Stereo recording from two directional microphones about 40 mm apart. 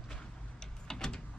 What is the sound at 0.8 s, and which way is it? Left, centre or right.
Power windows, centre.